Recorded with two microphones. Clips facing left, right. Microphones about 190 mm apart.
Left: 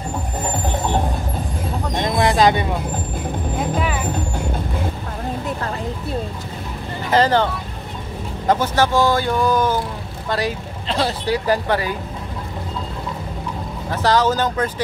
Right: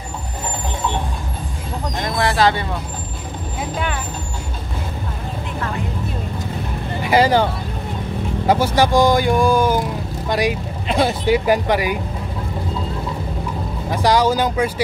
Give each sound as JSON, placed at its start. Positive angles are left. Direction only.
{"t": 2.0, "sound": "speech", "side_deg": 20}
{"t": 7.1, "sound": "speech", "side_deg": -10}
{"t": 8.5, "sound": "speech", "side_deg": -10}
{"t": 13.8, "sound": "speech", "side_deg": -10}